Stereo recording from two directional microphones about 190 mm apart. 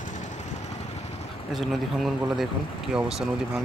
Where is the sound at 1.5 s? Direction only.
Centre (ahead or behind).